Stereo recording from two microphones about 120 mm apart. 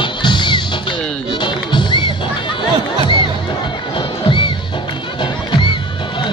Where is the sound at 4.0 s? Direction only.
40° left (ahead or behind).